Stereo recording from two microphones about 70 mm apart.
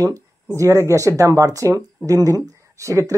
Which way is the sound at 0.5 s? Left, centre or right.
Right.